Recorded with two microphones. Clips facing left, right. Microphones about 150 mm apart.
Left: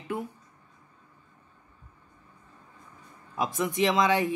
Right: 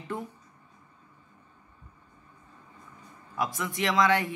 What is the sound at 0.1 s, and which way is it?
Speech, 10° left (ahead or behind).